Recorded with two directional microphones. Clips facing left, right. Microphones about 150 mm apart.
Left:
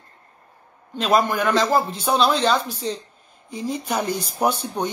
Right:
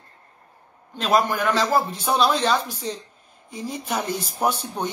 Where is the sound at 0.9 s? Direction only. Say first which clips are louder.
Left 1 dB; centre (ahead or behind).